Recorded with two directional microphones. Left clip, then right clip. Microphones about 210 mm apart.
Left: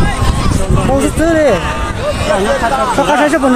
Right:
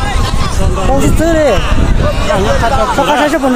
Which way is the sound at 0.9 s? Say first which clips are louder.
Even; centre (ahead or behind).